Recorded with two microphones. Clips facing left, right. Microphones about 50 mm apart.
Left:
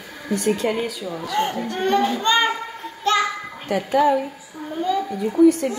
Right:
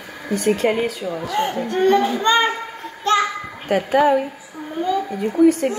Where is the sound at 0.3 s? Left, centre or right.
Right.